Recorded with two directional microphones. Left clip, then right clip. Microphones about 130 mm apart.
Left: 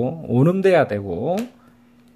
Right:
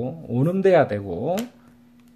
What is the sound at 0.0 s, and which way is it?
Speech, 35° left (ahead or behind).